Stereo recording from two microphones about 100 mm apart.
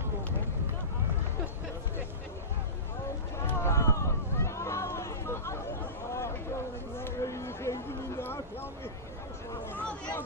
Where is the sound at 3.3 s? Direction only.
25° left (ahead or behind).